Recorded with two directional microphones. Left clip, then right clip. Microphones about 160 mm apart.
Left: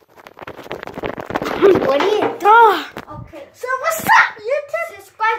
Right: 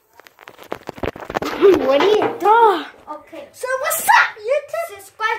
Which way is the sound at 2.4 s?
25° right (ahead or behind).